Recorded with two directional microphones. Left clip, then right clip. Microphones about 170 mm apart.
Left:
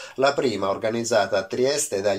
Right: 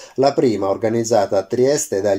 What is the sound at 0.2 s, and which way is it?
Speech, 45° right (ahead or behind).